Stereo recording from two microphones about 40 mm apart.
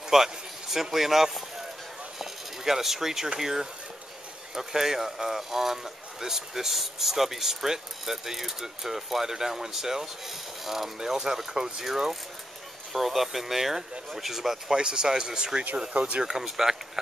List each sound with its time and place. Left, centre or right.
0.1 s a sound: centre
0.9 s speech: centre
2.1 s a sound: centre
3.3 s speech: centre
14.8 s speech: right
15.9 s speech: right
16.2 s speech: centre